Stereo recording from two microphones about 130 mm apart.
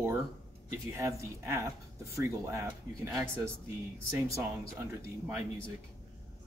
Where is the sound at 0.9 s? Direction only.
20° right (ahead or behind).